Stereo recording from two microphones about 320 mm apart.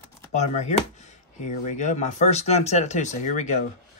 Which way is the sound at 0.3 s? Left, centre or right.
Left.